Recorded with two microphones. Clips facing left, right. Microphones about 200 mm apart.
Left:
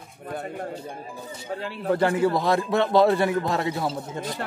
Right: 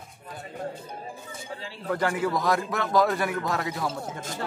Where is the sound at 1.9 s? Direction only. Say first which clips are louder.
Left 5 dB; 30° left (ahead or behind).